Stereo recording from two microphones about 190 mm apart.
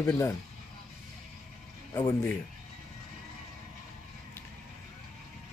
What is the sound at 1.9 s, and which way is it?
Speech, 15° left (ahead or behind).